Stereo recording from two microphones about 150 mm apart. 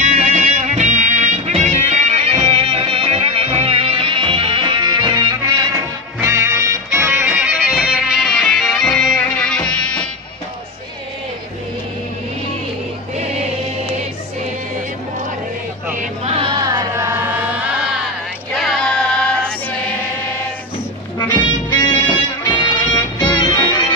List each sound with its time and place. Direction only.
0.0 s music: 55° right (ahead or behind); by 5.2 s 30° right (ahead or behind)
6.1 s music: 20° right (ahead or behind); by 9.7 s 5° left (ahead or behind)
16.3 s music: 35° right (ahead or behind)
16.6 s music: 20° right (ahead or behind)
18.5 s female singing: centre (ahead or behind)
21.2 s music: 30° left (ahead or behind)